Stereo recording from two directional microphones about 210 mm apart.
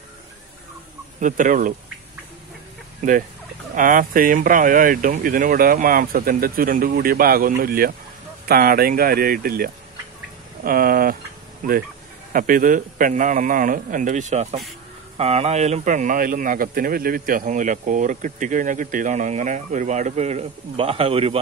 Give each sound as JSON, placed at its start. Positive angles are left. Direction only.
{"t": 1.2, "sound": "speech", "side_deg": -40}
{"t": 3.7, "sound": "speech", "side_deg": -40}